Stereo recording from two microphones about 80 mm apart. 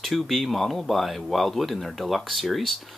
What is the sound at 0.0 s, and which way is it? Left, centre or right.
Speech, centre.